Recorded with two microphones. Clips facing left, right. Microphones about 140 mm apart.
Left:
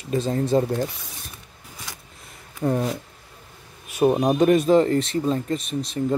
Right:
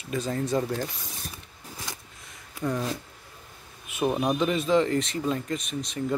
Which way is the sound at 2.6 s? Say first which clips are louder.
Left 6 dB; 35° left (ahead or behind).